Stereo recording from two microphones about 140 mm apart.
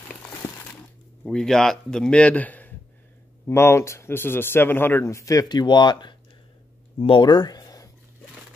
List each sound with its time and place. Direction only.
1.2 s a man's voice: 5° left (ahead or behind); by 7.9 s 25° left (ahead or behind)